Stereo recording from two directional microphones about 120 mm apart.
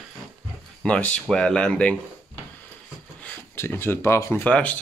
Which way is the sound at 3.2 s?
15° left (ahead or behind).